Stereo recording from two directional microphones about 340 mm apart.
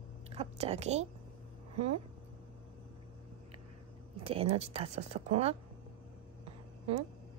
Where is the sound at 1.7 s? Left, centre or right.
Right.